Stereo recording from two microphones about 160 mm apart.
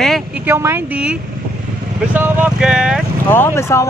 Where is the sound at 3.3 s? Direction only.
15° left (ahead or behind).